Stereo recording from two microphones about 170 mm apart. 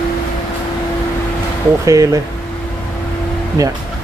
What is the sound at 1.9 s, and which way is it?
Speech, 20° right (ahead or behind).